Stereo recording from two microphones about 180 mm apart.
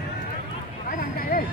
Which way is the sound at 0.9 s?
50° left (ahead or behind).